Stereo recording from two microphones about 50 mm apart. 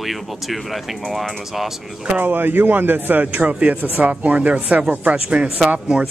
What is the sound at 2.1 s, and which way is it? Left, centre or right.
Speech, right.